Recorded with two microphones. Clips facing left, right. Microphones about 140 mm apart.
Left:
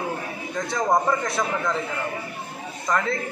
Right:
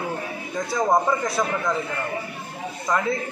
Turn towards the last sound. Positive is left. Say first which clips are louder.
# right 1 dB
turn(degrees=-20)  # may be behind; listen again after turning